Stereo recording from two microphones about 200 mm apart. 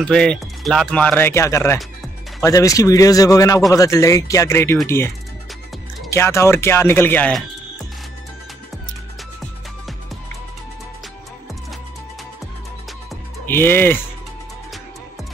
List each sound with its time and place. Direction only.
0.0 s speech: 5° left (ahead or behind)
13.5 s speech: 10° left (ahead or behind)